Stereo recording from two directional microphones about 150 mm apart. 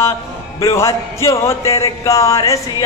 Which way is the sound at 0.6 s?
20° left (ahead or behind).